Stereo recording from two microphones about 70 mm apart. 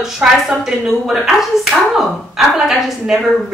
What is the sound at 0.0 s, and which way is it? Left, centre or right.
Speech, centre.